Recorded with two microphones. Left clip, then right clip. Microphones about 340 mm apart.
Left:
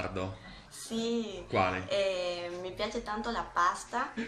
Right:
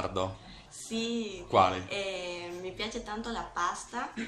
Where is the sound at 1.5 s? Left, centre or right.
Centre.